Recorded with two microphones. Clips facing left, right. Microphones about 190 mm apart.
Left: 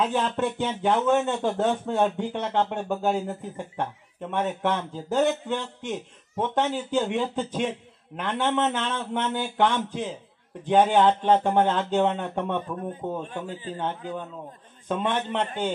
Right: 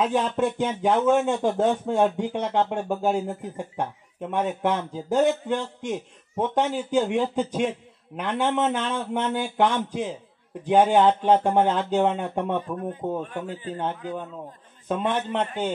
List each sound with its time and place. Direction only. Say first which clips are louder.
0.0 s a man's voice: right 2 dB; 10° right (ahead or behind)
13.2 s a man's voice: right 2 dB; 25° left (ahead or behind)
13.7 s a man's voice: right 1 dB; 5° right (ahead or behind)